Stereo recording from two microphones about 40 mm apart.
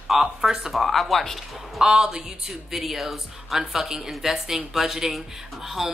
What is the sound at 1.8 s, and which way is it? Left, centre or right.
Speech, centre.